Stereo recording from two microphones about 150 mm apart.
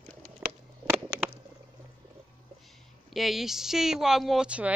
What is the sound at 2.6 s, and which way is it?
Speech, centre (ahead or behind).